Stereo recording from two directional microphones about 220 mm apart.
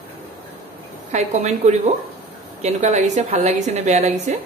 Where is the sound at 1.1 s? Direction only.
30° right (ahead or behind).